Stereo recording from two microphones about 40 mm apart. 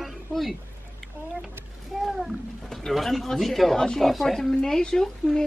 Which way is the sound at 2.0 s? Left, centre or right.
Centre.